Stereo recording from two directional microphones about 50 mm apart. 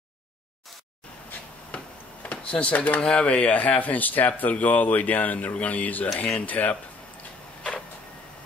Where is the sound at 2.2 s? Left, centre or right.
Left.